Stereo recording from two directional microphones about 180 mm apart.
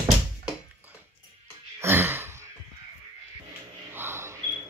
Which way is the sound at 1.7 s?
10° right (ahead or behind).